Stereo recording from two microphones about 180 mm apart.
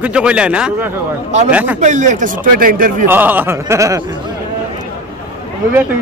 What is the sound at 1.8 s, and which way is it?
Speech, 45° right (ahead or behind).